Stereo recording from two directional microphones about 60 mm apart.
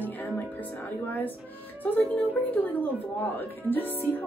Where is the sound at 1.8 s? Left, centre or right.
Left.